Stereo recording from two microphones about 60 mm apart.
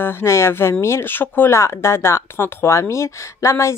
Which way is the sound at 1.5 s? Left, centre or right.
Left.